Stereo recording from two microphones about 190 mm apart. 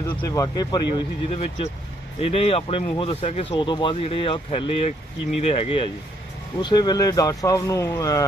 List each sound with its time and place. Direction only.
0.3 s speech: 20° left (ahead or behind)